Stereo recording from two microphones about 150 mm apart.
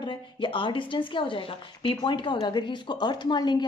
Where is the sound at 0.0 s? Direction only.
30° left (ahead or behind).